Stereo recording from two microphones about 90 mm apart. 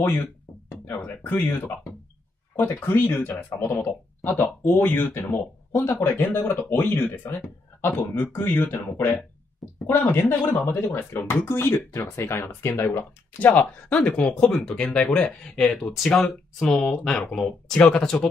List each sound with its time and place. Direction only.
0.7 s speech: 20° left (ahead or behind)
13.4 s speech: 20° left (ahead or behind)